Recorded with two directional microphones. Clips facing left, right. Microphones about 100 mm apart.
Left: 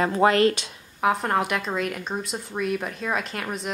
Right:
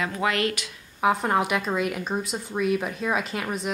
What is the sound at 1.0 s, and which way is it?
Speech, centre (ahead or behind).